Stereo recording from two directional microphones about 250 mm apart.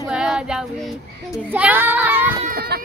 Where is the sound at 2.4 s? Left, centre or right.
Right.